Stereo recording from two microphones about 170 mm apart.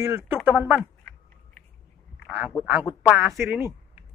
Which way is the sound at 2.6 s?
10° right (ahead or behind).